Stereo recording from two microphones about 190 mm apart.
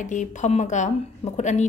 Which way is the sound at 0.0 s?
40° left (ahead or behind).